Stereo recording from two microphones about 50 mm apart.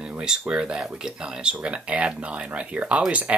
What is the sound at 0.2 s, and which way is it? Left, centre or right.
Speech, centre.